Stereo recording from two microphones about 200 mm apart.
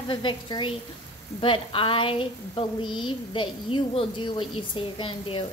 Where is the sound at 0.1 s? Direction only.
25° left (ahead or behind).